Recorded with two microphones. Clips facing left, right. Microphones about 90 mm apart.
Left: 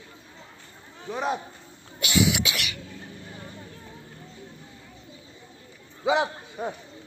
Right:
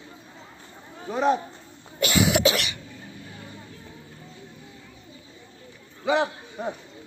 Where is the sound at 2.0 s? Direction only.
45° right (ahead or behind).